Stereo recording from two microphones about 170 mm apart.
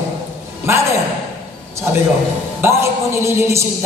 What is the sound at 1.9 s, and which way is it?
A woman's voice, 10° right (ahead or behind).